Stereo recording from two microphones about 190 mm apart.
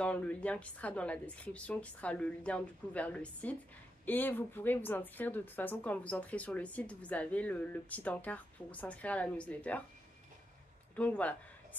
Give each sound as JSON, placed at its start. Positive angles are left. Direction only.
{"t": 0.0, "sound": "speech", "side_deg": 5}
{"t": 11.0, "sound": "speech", "side_deg": 10}